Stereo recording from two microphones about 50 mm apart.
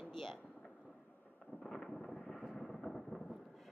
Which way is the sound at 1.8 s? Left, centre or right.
Left.